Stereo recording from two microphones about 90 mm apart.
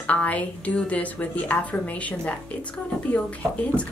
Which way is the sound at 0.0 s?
15° left (ahead or behind).